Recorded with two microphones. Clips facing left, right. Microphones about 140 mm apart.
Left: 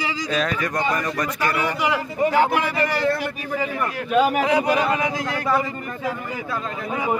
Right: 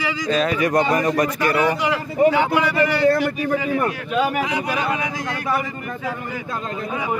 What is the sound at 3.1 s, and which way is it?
Speech, 50° right (ahead or behind).